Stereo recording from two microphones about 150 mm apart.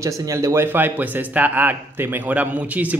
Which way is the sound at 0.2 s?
20° right (ahead or behind).